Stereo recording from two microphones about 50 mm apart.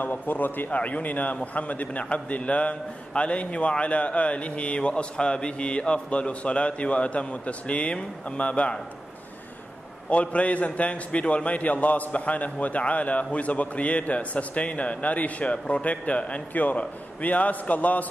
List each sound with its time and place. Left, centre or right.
0.0 s a man's voice: left
10.0 s a man's voice: left